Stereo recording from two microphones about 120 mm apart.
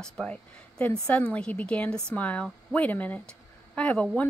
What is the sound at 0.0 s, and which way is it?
Speech, 10° left (ahead or behind).